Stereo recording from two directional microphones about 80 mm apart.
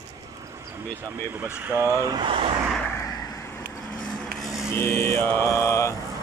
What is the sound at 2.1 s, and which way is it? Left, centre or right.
Speech, right.